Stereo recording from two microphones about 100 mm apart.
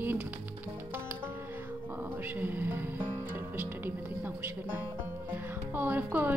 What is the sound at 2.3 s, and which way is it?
Speech, 20° right (ahead or behind).